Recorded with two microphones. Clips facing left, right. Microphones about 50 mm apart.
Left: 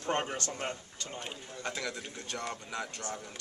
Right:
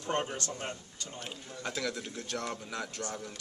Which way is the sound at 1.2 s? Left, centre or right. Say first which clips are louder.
Right 1 dB; centre.